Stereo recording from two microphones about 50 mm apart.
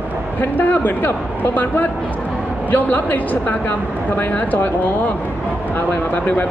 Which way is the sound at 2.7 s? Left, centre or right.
Left.